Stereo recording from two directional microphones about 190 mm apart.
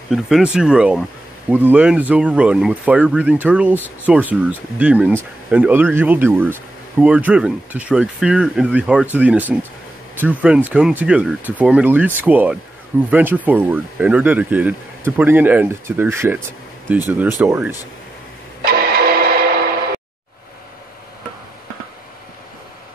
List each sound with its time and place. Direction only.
0.1 s speech: 5° right (ahead or behind)
18.6 s music: 55° right (ahead or behind)